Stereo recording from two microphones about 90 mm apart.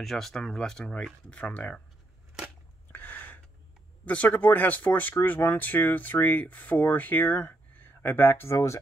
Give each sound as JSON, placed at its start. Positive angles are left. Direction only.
{"t": 0.0, "sound": "speech", "side_deg": 0}
{"t": 2.9, "sound": "a sound", "side_deg": 20}
{"t": 4.0, "sound": "speech", "side_deg": 15}